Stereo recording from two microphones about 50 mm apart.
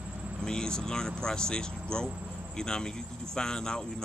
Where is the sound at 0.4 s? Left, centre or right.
Centre.